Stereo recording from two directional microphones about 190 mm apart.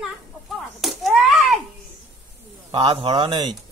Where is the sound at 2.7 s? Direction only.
25° right (ahead or behind).